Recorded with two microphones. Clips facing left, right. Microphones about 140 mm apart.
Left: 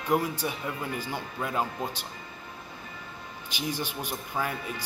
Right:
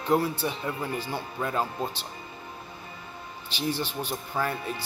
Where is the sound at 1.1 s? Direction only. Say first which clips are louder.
Right 2 dB; 15° right (ahead or behind).